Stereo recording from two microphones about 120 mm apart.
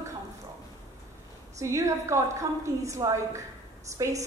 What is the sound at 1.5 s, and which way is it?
A woman's voice, 25° right (ahead or behind).